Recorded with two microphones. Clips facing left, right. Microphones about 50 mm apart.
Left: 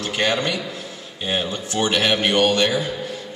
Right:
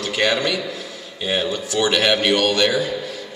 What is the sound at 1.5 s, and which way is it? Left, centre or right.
Speech, left.